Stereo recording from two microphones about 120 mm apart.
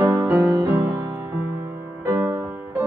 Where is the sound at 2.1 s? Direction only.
25° right (ahead or behind).